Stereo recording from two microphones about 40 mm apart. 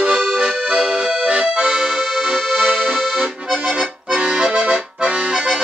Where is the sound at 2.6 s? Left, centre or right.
Right.